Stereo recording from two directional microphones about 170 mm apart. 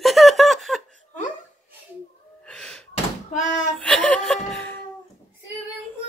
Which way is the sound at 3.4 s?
45° left (ahead or behind).